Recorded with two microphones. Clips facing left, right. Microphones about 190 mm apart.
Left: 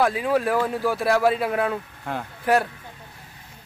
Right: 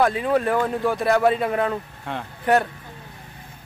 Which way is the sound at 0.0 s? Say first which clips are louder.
Right 1 dB; centre (ahead or behind).